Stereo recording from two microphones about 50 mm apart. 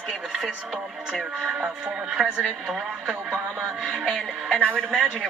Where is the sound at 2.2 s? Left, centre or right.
Centre.